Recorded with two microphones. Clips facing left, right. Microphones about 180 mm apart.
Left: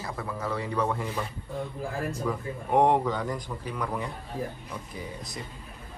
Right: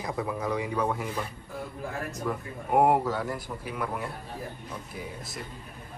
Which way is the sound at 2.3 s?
5° right (ahead or behind).